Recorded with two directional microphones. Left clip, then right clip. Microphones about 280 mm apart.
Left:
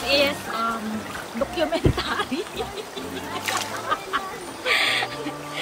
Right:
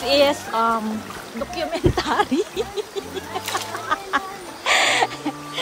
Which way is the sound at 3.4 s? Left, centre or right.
Centre.